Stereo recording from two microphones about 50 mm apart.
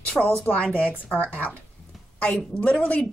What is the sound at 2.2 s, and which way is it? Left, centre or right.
Speech, left.